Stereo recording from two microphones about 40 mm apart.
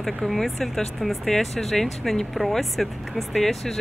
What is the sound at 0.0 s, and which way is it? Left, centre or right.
Speech, centre.